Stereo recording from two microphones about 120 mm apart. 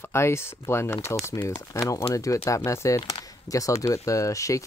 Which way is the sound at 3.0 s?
60° left (ahead or behind).